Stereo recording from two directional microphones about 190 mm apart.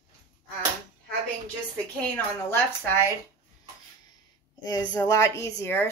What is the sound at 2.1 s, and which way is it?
A woman's voice, 10° left (ahead or behind).